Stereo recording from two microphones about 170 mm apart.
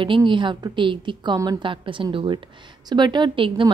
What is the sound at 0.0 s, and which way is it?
A woman's voice, 30° right (ahead or behind).